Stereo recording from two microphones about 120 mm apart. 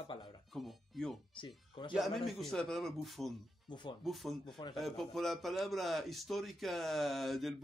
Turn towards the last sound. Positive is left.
turn(degrees=0)  # may be behind; listen again after turning